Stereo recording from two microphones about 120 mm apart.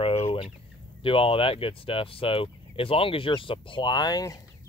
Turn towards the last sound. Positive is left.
turn(degrees=35)  # may be behind; listen again after turning